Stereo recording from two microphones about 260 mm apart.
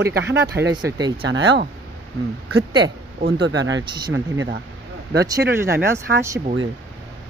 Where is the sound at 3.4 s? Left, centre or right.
Right.